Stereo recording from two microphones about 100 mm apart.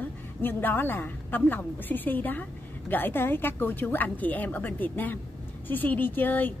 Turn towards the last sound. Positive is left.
turn(degrees=20)  # may be behind; listen again after turning